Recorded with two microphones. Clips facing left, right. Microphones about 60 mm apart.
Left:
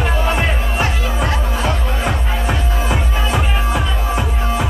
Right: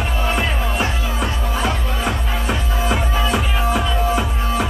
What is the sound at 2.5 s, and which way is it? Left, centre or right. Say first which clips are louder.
Music: even; left.